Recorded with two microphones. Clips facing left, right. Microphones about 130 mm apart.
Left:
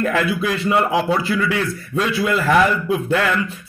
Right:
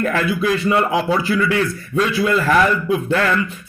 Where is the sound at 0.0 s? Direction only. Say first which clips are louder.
Right 1 dB; 5° left (ahead or behind).